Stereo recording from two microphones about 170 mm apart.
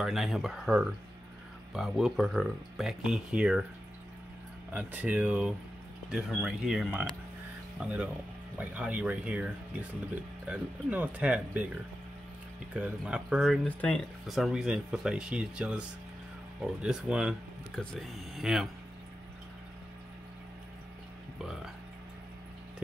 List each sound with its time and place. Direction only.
0.0 s speech: centre (ahead or behind)
4.7 s speech: 10° right (ahead or behind)
13.7 s speech: 10° left (ahead or behind)
16.8 s speech: 5° right (ahead or behind)